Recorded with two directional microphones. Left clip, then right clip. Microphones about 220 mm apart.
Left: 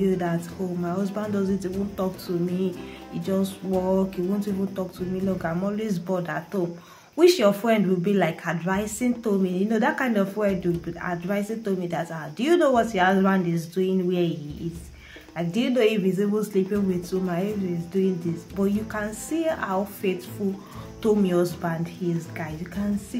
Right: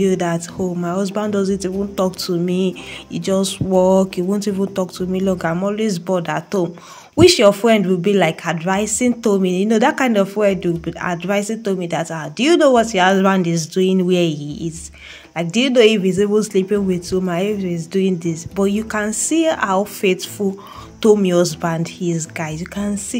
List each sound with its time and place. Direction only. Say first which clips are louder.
0.0 s a woman's voice: right 7 dB; 45° right (ahead or behind)
15.3 s a woman's voice: right 10 dB; 40° right (ahead or behind)